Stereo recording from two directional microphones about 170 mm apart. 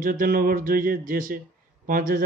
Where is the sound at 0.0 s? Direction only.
55° right (ahead or behind).